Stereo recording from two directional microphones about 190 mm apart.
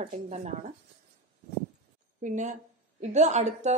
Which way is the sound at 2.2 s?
40° right (ahead or behind).